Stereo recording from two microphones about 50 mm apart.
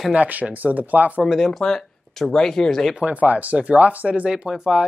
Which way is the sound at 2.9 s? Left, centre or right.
Right.